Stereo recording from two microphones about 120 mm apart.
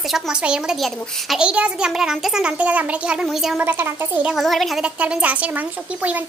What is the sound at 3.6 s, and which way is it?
Speech, 20° right (ahead or behind).